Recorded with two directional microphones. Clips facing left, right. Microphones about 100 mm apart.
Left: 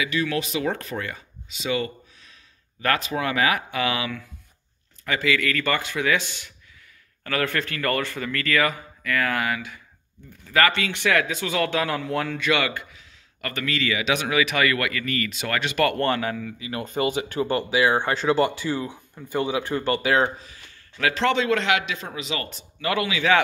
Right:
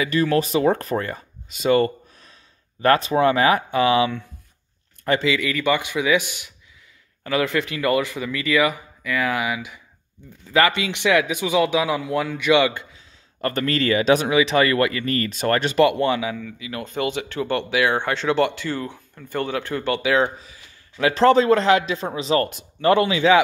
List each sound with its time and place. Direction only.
0.0 s speech: 40° right (ahead or behind)
2.8 s speech: 35° right (ahead or behind); by 12.4 s 5° right (ahead or behind)
12.4 s a sound: 20° right (ahead or behind)
13.5 s speech: 40° right (ahead or behind)
14.3 s speech: 30° right (ahead or behind)
15.8 s speech: 10° right (ahead or behind)
16.7 s speech: 5° left (ahead or behind)
20.1 s speech: centre (ahead or behind)
21.0 s speech: 35° right (ahead or behind)